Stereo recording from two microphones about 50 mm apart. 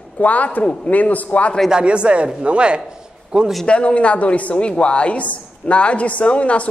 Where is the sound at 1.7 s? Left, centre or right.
Right.